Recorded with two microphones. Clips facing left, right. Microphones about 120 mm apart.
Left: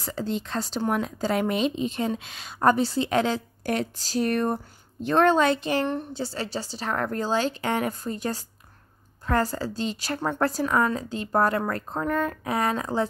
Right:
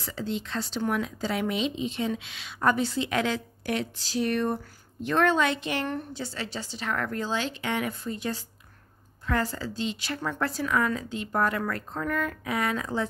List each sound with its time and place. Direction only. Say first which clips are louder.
0.0 s speech: left 3 dB; 45° left (ahead or behind)